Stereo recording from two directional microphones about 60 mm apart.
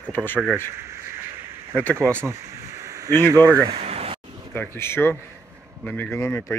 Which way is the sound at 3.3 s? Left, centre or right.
Right.